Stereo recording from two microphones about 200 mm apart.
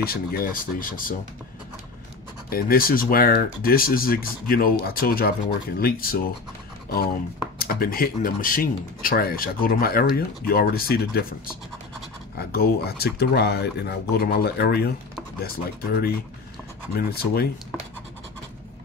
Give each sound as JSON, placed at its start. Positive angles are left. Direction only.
{"t": 0.0, "sound": "speech", "side_deg": 50}
{"t": 2.5, "sound": "speech", "side_deg": 45}
{"t": 7.5, "sound": "speech", "side_deg": 45}
{"t": 12.4, "sound": "speech", "side_deg": 50}